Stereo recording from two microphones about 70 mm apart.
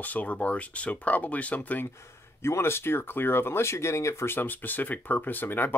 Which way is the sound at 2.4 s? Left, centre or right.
Left.